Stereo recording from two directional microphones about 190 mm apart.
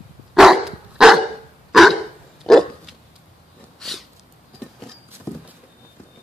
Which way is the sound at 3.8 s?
Centre (ahead or behind).